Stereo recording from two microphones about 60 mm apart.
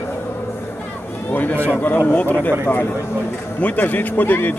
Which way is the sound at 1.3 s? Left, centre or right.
Left.